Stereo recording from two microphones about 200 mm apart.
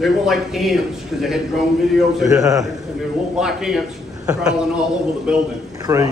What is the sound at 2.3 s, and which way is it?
Speech, 15° right (ahead or behind).